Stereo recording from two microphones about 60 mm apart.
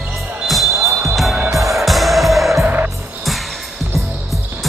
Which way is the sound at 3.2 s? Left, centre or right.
Centre.